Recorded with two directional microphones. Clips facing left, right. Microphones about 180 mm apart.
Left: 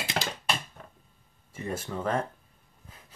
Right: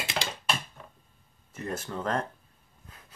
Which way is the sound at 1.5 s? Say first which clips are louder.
Left 1 dB; 10° left (ahead or behind).